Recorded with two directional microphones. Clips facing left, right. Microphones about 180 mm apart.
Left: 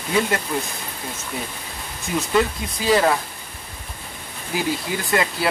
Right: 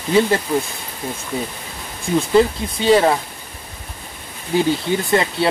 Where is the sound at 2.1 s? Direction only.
30° right (ahead or behind).